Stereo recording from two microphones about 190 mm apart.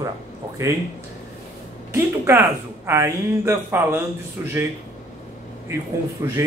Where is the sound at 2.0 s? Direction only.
15° right (ahead or behind).